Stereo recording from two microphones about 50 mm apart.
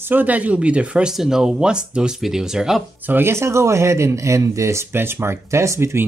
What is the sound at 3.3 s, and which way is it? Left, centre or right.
Speech, right.